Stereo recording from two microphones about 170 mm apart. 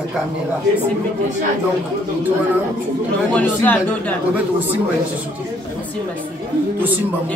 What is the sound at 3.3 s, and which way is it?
Speech, 10° left (ahead or behind).